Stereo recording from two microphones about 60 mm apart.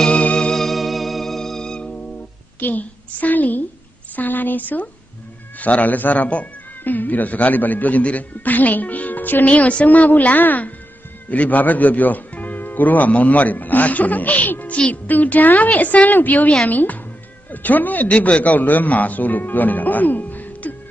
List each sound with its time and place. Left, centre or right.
0.0 s music: centre
2.6 s speech: left